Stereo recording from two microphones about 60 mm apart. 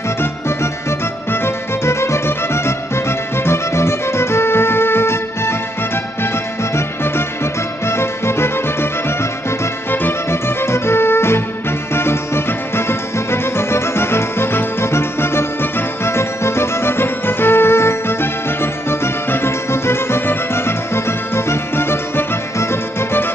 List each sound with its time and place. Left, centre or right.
0.8 s music: left
7.8 s music: left
9.8 s music: left